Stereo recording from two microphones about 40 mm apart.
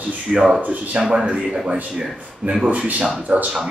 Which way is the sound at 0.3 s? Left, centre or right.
Right.